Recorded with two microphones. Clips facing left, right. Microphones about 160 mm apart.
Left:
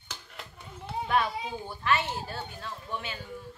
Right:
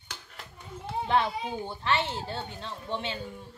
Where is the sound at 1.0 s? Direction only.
25° right (ahead or behind).